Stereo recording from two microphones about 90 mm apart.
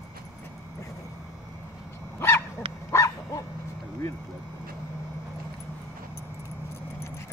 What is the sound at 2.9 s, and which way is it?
Bow-wow, 35° left (ahead or behind).